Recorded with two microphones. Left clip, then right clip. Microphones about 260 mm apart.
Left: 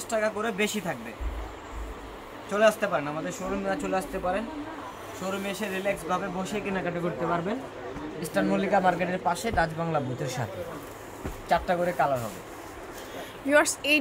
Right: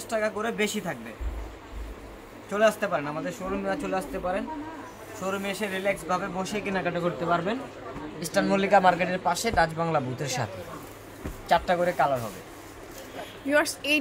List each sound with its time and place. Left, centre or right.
0.1 s a man's voice: centre
2.5 s a man's voice: centre
5.3 s a man's voice: centre
6.8 s a man's voice: centre
11.4 s a man's voice: centre
13.5 s speech: centre